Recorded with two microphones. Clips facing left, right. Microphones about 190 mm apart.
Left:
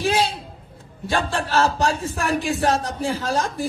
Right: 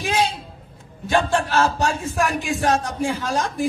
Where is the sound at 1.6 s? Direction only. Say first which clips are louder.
Even; 35° left (ahead or behind).